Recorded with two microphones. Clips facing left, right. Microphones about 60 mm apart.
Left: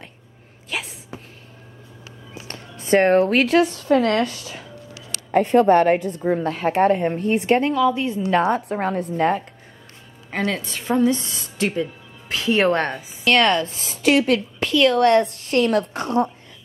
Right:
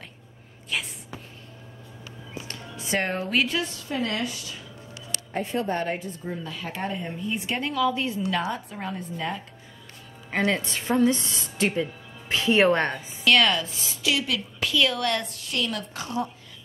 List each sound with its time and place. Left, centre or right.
2.4 s music: left
3.2 s a woman's voice: left
4.9 s a woman's voice: left
7.7 s a woman's voice: centre
8.3 s a woman's voice: left
8.5 s a woman's voice: left
10.5 s a woman's voice: centre
13.3 s a woman's voice: left
14.6 s a woman's voice: centre
15.0 s a woman's voice: left